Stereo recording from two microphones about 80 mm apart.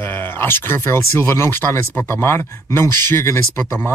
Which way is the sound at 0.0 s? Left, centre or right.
Left.